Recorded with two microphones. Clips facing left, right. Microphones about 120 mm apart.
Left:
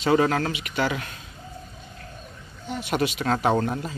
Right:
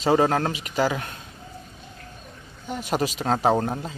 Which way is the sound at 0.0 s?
35° right (ahead or behind).